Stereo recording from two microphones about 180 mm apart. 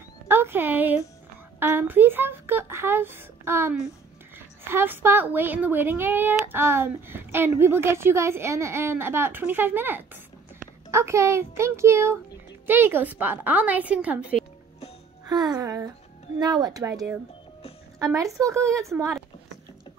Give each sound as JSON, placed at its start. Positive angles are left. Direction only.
{"t": 0.3, "sound": "speech", "side_deg": -10}
{"t": 15.2, "sound": "speech", "side_deg": -20}